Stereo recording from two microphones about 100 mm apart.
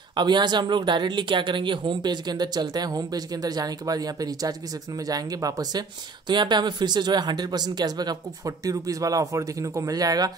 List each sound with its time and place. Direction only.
0.1 s speech: 50° right (ahead or behind)